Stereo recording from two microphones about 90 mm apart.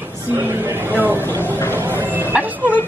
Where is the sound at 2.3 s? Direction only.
20° right (ahead or behind).